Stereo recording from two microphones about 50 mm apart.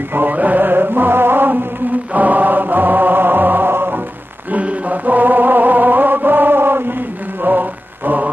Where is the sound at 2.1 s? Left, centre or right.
Right.